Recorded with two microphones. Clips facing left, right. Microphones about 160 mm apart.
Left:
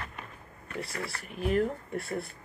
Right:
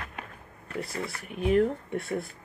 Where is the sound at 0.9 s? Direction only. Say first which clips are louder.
Right 3 dB; 20° right (ahead or behind).